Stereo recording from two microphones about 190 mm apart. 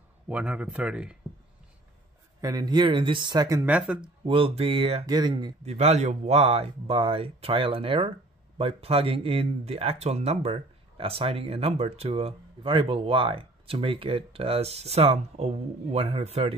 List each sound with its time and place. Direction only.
0.3 s speech: 5° right (ahead or behind)
2.4 s speech: 20° right (ahead or behind); by 4.1 s 5° right (ahead or behind)
4.3 s speech: 30° right (ahead or behind)
5.6 s speech: 35° right (ahead or behind)